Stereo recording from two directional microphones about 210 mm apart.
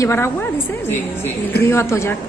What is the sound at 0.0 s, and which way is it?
A woman's voice, 10° left (ahead or behind).